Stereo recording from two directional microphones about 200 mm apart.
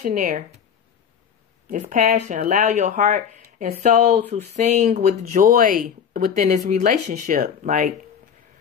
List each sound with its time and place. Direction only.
0.0 s speech: 40° right (ahead or behind)
1.7 s speech: 40° right (ahead or behind)